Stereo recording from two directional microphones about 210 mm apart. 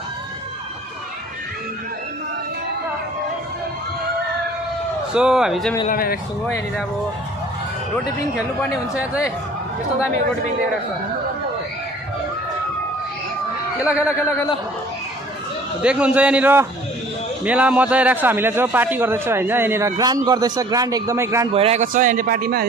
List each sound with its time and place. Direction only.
5.1 s a man's voice: 5° right (ahead or behind)
5.9 s speech: 45° left (ahead or behind)
13.7 s a man's voice: 5° right (ahead or behind)
15.8 s a man's voice: 5° right (ahead or behind)
21.5 s speech: 30° right (ahead or behind)
21.8 s speech: 40° right (ahead or behind)